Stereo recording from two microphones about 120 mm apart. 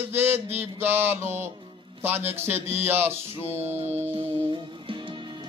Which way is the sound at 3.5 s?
65° right (ahead or behind).